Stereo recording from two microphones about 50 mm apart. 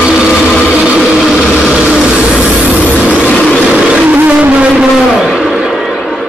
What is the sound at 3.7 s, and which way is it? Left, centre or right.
Vehicle, right.